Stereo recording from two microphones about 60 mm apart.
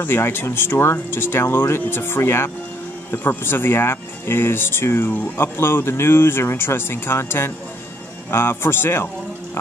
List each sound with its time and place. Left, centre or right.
0.0 s speech: left